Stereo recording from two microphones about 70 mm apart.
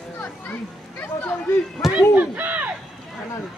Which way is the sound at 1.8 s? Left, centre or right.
Centre.